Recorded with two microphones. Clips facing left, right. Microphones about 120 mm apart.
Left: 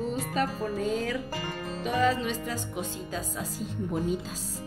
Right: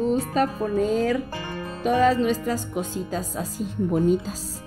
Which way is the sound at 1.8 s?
45° right (ahead or behind).